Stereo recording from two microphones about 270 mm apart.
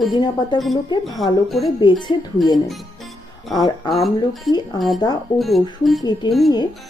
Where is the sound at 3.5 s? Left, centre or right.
Centre.